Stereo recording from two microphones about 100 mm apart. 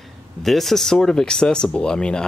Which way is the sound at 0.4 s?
Centre (ahead or behind).